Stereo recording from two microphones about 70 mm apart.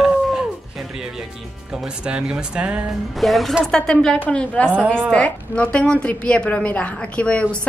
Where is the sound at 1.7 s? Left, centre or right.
Centre.